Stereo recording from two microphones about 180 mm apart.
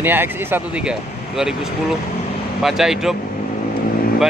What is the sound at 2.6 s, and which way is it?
Speech, centre (ahead or behind).